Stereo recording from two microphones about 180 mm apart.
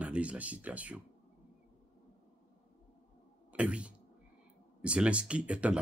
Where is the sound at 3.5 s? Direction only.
5° right (ahead or behind).